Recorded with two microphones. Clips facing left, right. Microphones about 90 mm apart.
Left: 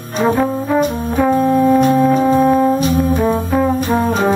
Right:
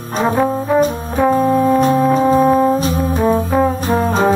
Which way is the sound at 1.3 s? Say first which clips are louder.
Left 1 dB; centre (ahead or behind).